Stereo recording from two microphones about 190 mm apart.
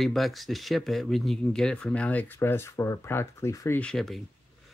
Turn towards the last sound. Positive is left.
turn(degrees=0)  # may be behind; listen again after turning